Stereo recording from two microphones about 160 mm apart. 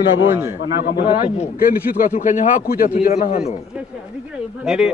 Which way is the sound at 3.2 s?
45° left (ahead or behind).